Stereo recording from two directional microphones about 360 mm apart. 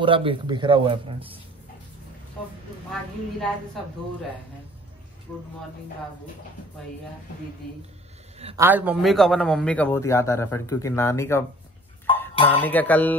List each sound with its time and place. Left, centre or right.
0.0 s speech: centre
8.4 s a man's voice: centre
8.6 s a man's voice: centre